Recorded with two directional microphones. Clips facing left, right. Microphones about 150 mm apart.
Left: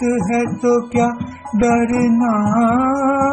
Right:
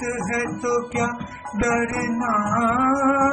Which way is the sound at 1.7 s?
30° left (ahead or behind).